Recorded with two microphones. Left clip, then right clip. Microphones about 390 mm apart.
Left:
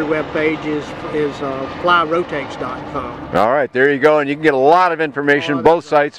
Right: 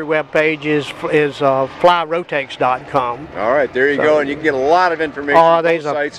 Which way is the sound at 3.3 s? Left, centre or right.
Left.